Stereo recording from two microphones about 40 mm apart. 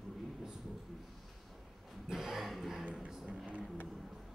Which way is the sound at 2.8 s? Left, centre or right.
Right.